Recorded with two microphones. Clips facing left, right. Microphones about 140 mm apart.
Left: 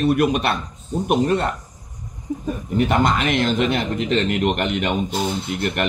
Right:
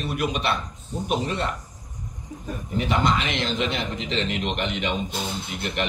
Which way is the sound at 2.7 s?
55° left (ahead or behind).